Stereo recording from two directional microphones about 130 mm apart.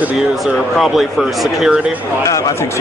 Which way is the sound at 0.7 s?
Centre (ahead or behind).